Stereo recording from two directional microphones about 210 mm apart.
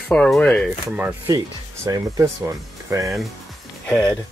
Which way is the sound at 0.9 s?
10° right (ahead or behind).